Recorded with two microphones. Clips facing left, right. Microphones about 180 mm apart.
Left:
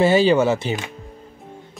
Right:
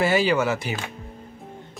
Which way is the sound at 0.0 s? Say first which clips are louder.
Left 5 dB; 25° left (ahead or behind).